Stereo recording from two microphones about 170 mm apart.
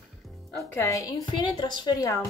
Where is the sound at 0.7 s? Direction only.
15° left (ahead or behind).